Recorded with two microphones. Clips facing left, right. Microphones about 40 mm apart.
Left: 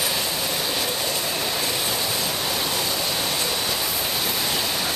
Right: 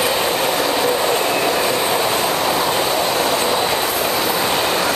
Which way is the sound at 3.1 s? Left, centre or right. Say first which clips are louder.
Right 8 dB; right.